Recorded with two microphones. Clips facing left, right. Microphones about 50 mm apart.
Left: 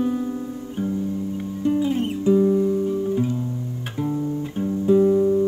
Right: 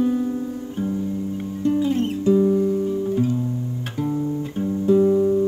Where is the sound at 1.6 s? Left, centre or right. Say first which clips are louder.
Right 1 dB; centre.